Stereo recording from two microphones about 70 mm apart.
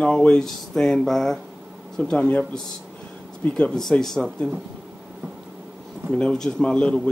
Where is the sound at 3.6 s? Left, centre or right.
Centre.